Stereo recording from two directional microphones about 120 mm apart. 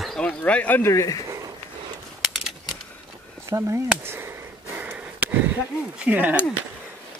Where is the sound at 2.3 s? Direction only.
Centre (ahead or behind).